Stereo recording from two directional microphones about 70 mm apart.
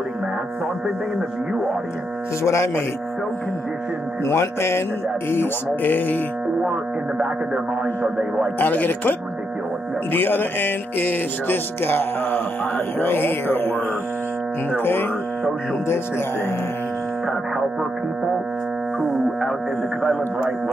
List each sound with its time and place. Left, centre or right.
2.4 s speech: left
4.2 s mantra: left
5.3 s speech: left
6.6 s music: centre
8.5 s speech: left
10.1 s speech: left
14.7 s mantra: left